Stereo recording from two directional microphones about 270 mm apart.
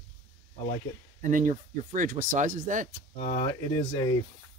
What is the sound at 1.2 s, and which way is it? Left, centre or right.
Speech, right.